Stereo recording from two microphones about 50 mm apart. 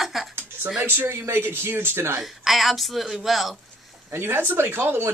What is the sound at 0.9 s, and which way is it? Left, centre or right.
Speech, right.